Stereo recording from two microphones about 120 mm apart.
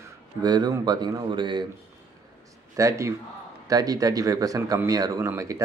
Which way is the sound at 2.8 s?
25° right (ahead or behind).